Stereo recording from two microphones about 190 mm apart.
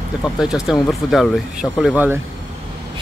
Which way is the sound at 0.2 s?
5° right (ahead or behind).